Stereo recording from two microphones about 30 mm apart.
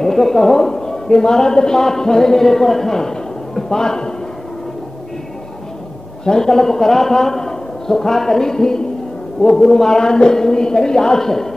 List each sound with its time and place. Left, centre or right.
0.0 s a woman's voice: centre
0.6 s a man's voice: centre
6.2 s a man's voice: left